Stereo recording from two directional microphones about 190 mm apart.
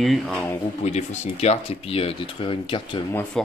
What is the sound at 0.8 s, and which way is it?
Speech, 35° left (ahead or behind).